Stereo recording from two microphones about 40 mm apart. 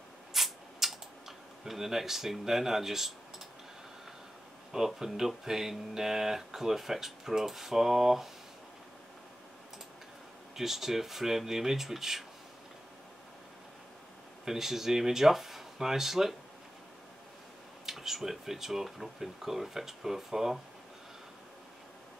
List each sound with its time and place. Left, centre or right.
0.3 s a sound: centre
1.6 s speech: centre
4.7 s speech: centre
10.5 s speech: centre
14.4 s speech: centre
17.8 s speech: centre